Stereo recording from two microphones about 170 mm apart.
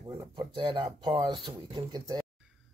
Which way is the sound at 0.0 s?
25° right (ahead or behind).